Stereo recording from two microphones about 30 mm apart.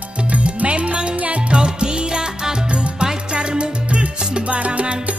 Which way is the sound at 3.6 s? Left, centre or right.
Right.